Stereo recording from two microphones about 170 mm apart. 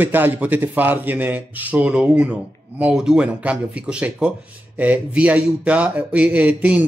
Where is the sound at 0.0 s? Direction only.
10° right (ahead or behind).